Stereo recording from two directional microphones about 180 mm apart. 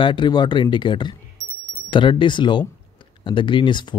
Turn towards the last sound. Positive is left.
turn(degrees=25)  # may be behind; listen again after turning